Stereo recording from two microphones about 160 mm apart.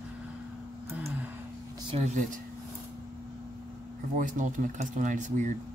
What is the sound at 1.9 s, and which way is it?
Speech, 50° right (ahead or behind).